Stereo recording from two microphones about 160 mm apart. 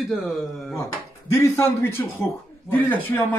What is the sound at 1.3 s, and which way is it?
A man's voice, 15° left (ahead or behind).